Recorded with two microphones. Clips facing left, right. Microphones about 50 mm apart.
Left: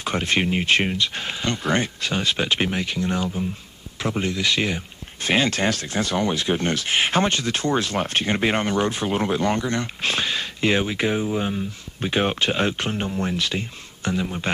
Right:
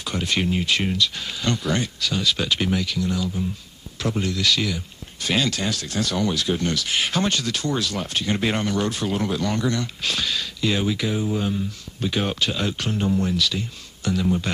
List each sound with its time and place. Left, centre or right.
0.0 s speech: left